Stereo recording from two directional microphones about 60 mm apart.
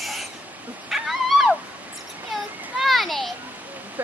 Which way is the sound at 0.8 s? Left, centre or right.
Centre.